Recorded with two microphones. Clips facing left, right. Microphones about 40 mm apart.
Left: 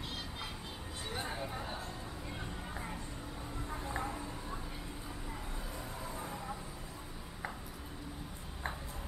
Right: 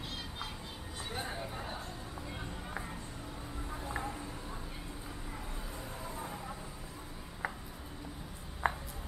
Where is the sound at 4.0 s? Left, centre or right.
Centre.